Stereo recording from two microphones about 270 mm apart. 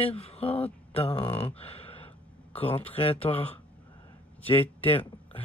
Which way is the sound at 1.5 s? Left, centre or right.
Left.